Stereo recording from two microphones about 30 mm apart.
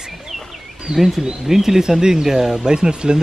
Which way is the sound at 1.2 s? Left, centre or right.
Centre.